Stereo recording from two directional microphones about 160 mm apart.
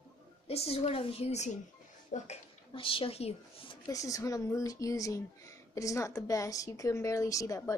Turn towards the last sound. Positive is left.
turn(degrees=20)  # may be behind; listen again after turning